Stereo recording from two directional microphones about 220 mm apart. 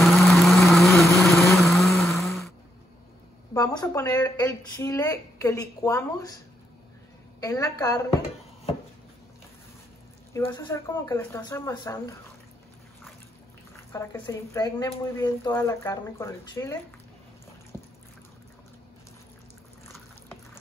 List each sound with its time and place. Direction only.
0.0 s vehicle: centre (ahead or behind)
3.5 s speech: 15° left (ahead or behind)
7.3 s speech: 15° left (ahead or behind)
10.3 s speech: 15° left (ahead or behind)
13.9 s speech: 10° left (ahead or behind)